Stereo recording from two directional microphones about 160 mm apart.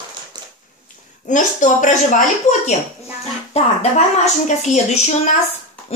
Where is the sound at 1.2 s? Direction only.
50° left (ahead or behind).